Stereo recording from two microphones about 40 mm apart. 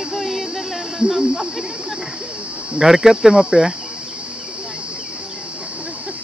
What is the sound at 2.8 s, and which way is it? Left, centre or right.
Speech, centre.